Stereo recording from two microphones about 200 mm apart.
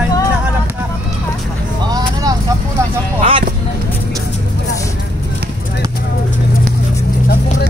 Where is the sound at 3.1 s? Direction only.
25° right (ahead or behind).